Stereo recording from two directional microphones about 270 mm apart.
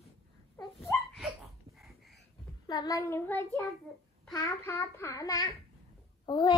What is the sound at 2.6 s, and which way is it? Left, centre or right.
A child's voice, centre.